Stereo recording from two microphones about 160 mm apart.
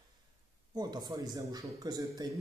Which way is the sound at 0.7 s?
25° right (ahead or behind).